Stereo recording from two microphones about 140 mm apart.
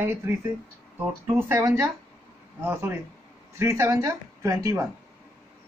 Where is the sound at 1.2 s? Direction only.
15° right (ahead or behind).